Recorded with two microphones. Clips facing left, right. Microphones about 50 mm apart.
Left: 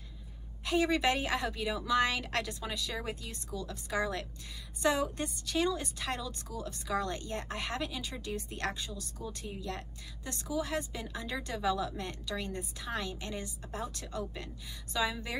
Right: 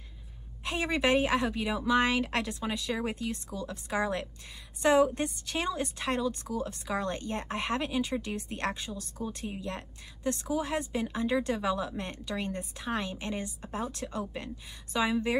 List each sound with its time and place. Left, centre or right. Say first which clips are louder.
0.7 s a woman's voice: right 1 dB; right